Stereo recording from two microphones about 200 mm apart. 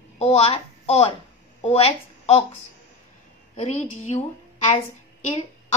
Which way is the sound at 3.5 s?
35° left (ahead or behind).